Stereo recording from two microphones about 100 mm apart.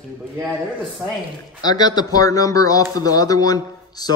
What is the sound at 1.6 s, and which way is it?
A man's voice, 40° left (ahead or behind).